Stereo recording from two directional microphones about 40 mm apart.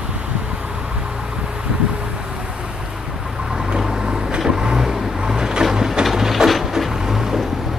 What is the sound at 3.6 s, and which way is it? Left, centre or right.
Vehicle, centre.